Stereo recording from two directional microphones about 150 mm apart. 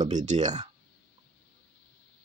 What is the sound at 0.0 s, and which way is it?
Speech, 50° right (ahead or behind).